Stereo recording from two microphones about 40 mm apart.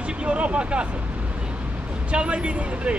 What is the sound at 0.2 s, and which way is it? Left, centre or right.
Speech, right.